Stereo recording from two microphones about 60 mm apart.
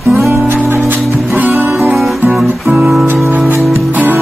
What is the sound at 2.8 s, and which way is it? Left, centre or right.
Music, centre.